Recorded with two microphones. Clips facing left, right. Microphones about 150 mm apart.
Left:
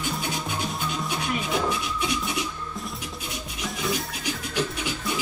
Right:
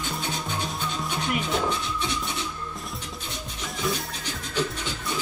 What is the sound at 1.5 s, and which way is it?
Speech, 10° left (ahead or behind).